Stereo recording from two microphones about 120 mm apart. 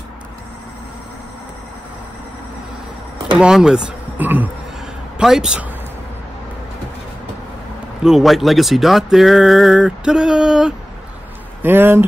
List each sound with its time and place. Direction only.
3.3 s a man's voice: 5° right (ahead or behind)
8.0 s speech: 5° right (ahead or behind)
11.6 s speech: 20° right (ahead or behind)